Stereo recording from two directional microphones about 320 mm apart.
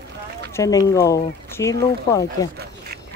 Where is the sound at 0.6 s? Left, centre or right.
Centre.